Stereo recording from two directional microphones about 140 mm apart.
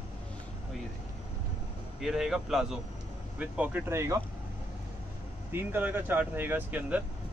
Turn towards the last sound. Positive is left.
turn(degrees=-10)  # may be behind; listen again after turning